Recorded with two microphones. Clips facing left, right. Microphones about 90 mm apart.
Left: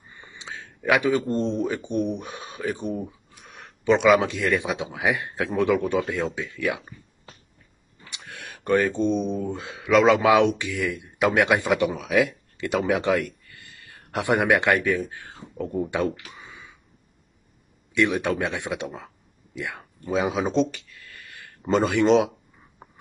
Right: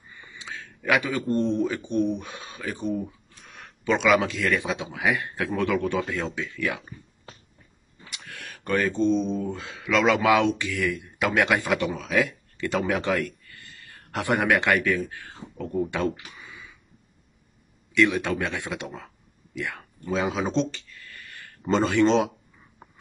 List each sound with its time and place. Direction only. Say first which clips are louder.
0.1 s speech: even; 30° left (ahead or behind)
8.1 s speech: left 1 dB; 20° left (ahead or behind)
16.3 s a sound: left 1 dB; 25° left (ahead or behind)
17.9 s speech: even; 20° left (ahead or behind)